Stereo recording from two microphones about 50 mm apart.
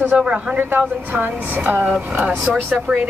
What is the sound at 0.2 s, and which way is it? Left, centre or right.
Speech, centre.